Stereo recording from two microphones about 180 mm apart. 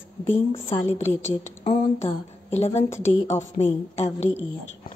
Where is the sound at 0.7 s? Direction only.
40° left (ahead or behind).